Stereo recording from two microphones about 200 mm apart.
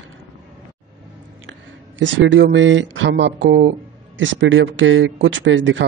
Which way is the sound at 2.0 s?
70° right (ahead or behind).